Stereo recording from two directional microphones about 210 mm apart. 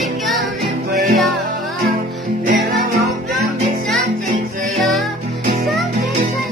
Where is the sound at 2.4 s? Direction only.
40° right (ahead or behind).